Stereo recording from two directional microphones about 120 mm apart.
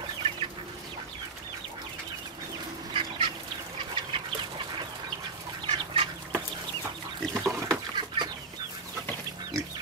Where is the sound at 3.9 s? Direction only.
45° right (ahead or behind).